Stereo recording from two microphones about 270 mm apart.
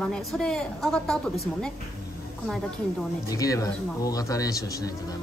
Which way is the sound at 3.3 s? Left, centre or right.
Centre.